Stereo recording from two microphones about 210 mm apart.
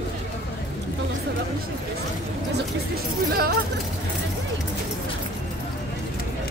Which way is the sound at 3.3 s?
45° right (ahead or behind).